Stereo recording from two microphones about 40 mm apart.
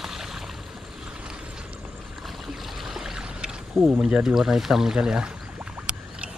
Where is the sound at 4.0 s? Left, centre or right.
Centre.